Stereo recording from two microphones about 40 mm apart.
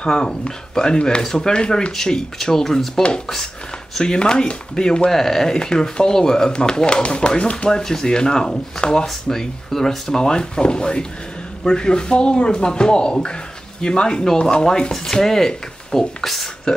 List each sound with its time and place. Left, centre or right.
0.0 s speech: left
2.4 s speech: centre
4.0 s speech: centre
5.1 s speech: centre; by 7.8 s left
7.8 s speech: centre